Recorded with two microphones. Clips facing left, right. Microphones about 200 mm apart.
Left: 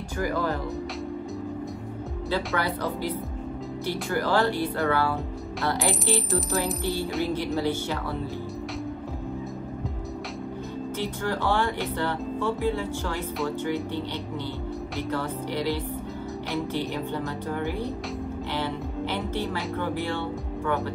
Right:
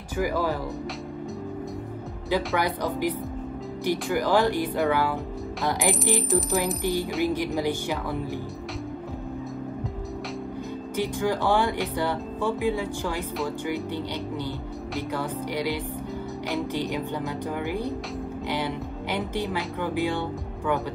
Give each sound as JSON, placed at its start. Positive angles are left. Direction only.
{"t": 0.2, "sound": "speech", "side_deg": -10}
{"t": 2.2, "sound": "speech", "side_deg": -15}
{"t": 11.0, "sound": "speech", "side_deg": -10}
{"t": 15.0, "sound": "speech", "side_deg": -10}
{"t": 18.5, "sound": "music", "side_deg": -15}